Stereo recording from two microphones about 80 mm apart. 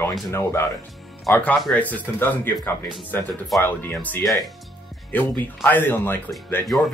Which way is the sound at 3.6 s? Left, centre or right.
Left.